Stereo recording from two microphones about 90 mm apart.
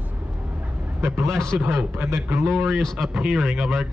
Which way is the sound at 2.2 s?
30° right (ahead or behind).